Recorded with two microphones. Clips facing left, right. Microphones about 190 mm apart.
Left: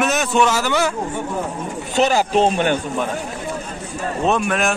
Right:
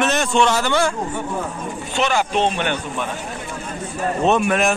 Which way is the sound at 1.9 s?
35° left (ahead or behind).